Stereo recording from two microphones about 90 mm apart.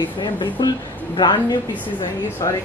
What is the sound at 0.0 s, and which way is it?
Speech, 60° left (ahead or behind).